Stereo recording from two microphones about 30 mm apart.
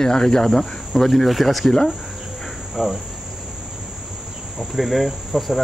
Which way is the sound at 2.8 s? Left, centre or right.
Centre.